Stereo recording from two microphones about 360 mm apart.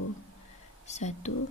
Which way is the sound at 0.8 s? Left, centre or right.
Centre.